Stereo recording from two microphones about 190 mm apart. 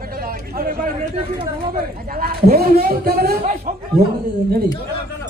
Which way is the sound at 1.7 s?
50° right (ahead or behind).